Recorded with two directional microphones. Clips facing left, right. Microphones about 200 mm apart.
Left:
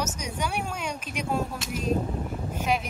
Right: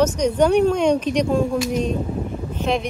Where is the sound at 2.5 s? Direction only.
10° left (ahead or behind).